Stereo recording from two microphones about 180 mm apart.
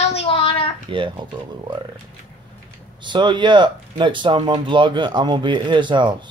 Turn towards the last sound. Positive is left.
turn(degrees=-25)  # may be behind; listen again after turning